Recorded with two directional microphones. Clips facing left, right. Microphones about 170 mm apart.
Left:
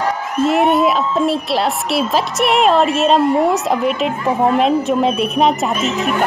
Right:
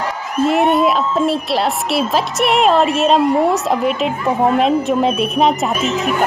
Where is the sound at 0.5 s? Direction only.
Centre (ahead or behind).